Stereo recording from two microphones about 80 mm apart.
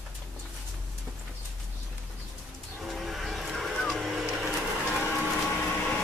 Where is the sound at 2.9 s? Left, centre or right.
Centre.